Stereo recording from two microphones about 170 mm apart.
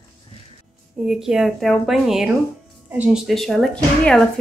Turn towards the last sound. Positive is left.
turn(degrees=5)  # may be behind; listen again after turning